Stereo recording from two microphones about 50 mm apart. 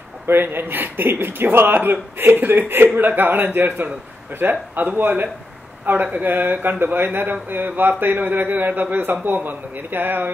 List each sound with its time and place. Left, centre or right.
0.3 s a man's voice: right